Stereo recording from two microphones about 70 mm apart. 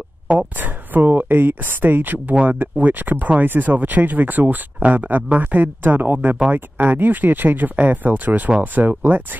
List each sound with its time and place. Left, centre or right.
0.3 s speech: right